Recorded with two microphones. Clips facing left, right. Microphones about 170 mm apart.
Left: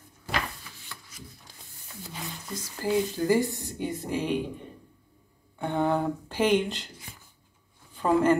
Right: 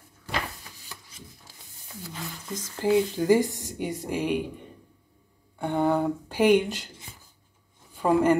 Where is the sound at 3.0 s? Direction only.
15° right (ahead or behind).